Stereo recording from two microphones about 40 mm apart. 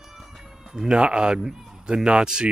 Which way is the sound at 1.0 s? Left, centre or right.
Right.